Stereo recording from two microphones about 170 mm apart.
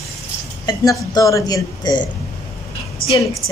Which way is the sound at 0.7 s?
20° left (ahead or behind).